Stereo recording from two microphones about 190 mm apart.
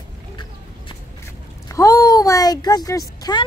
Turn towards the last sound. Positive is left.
turn(degrees=20)  # may be behind; listen again after turning